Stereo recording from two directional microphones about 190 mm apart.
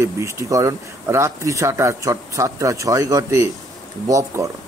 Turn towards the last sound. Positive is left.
turn(degrees=-15)  # may be behind; listen again after turning